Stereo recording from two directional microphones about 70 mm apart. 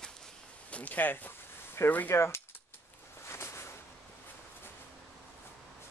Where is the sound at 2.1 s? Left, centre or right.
Left.